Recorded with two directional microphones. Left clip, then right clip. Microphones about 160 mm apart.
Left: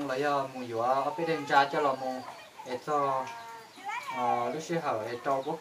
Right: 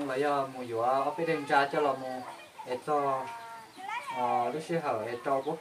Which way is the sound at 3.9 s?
75° right (ahead or behind).